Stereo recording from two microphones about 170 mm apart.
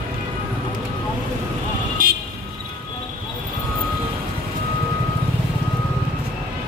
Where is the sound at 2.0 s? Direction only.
55° right (ahead or behind).